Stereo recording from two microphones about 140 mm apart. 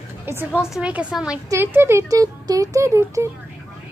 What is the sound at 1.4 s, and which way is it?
Speech, 15° right (ahead or behind).